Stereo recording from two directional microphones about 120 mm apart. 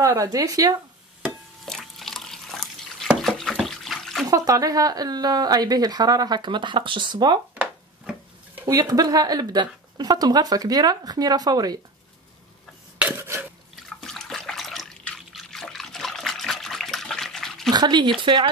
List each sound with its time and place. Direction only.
0.0 s speech: 25° right (ahead or behind)
1.7 s drip: 5° left (ahead or behind)
3.1 s a sound: centre (ahead or behind)
3.6 s water: centre (ahead or behind)
4.3 s a woman's voice: 30° right (ahead or behind)
8.6 s a woman's voice: 30° right (ahead or behind)
13.0 s a sound: 20° right (ahead or behind)
13.8 s water: 5° left (ahead or behind)
17.6 s speech: 35° right (ahead or behind)